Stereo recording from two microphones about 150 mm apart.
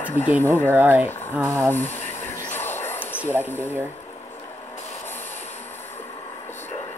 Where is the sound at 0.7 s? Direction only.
10° right (ahead or behind).